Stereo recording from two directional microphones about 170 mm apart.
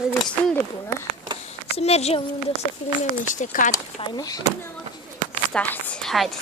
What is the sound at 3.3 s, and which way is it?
Speech, 50° left (ahead or behind).